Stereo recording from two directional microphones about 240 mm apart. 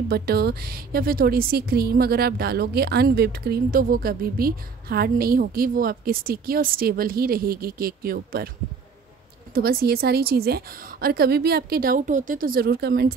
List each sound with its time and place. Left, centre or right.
0.1 s a woman's voice: right
9.5 s a woman's voice: right